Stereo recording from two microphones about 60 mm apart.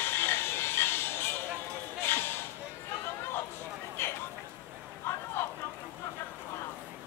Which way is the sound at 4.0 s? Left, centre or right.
Left.